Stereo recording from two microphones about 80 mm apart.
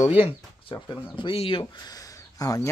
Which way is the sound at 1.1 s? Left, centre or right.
Left.